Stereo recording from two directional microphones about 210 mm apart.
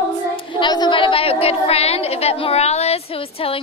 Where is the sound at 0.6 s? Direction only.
20° left (ahead or behind).